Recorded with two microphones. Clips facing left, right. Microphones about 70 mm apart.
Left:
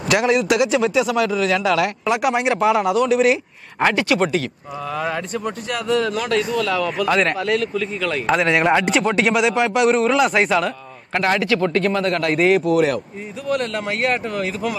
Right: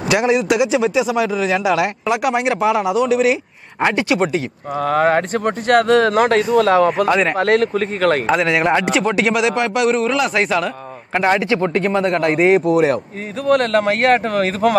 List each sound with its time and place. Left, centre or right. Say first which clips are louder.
0.0 s a man's voice: right 1 dB; centre
2.0 s a man's voice: right 1 dB; centre
4.7 s speech: right 9 dB; right
7.1 s speech: right 2 dB; centre
7.3 s speech: right 5 dB; right
8.3 s a man's voice: right 1 dB; centre
11.1 s speech: right 2 dB; centre
12.2 s speech: right 3 dB; right
13.5 s speech: right 8 dB; right